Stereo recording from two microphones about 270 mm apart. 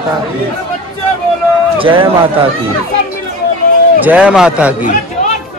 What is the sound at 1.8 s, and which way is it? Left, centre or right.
Speech, centre.